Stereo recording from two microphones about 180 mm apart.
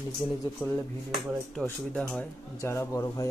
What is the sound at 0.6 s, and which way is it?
Speech, 5° left (ahead or behind).